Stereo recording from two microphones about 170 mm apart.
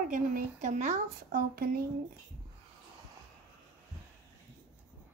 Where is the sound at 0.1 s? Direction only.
50° right (ahead or behind).